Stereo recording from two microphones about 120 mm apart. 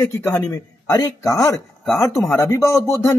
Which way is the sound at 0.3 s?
20° left (ahead or behind).